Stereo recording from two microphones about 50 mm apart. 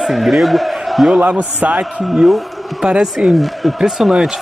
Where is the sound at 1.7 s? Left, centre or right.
Centre.